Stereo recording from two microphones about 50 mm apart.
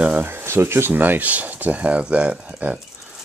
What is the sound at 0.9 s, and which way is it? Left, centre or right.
Speech, right.